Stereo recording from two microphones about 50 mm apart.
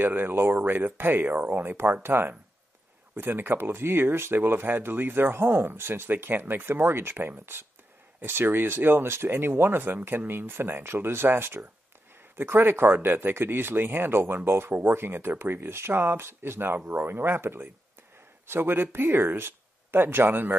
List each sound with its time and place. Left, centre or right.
0.0 s speech: right